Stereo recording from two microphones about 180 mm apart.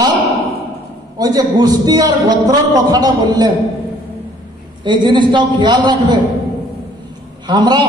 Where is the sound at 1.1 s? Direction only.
20° right (ahead or behind).